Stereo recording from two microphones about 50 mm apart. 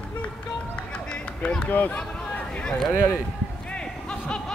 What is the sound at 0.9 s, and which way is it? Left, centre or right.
Run, left.